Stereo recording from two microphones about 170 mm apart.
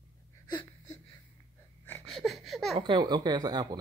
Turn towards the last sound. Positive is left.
turn(degrees=-25)  # may be behind; listen again after turning